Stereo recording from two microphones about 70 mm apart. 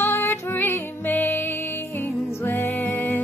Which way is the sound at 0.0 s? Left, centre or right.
Left.